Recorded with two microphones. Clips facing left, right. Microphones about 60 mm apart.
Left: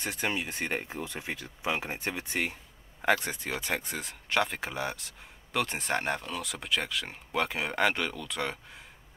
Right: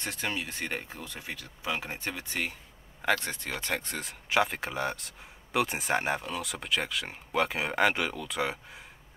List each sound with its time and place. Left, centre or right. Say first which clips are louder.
0.0 s speech: left 2 dB; centre